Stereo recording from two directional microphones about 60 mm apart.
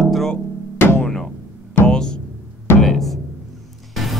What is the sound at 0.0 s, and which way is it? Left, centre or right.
Music, centre.